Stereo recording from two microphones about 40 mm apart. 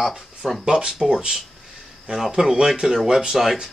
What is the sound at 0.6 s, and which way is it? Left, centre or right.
Speech, centre.